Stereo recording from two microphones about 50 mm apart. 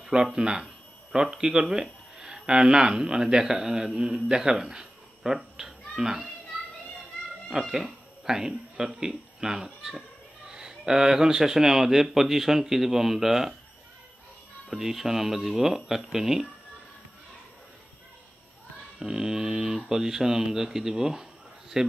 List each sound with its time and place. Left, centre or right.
0.1 s speech: centre
7.4 s speech: centre
14.7 s speech: centre
18.9 s speech: centre